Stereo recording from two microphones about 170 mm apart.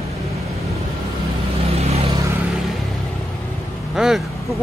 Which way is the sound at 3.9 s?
5° right (ahead or behind).